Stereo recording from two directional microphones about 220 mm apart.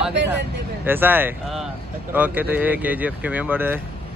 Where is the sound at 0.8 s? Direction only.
10° right (ahead or behind).